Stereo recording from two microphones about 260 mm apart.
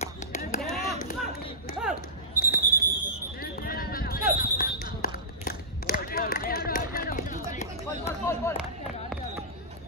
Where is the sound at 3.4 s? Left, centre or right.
Left.